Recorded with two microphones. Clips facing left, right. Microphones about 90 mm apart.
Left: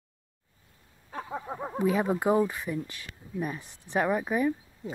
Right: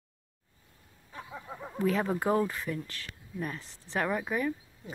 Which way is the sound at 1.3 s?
50° left (ahead or behind).